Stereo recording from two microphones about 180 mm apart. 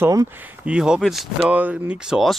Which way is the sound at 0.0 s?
15° right (ahead or behind).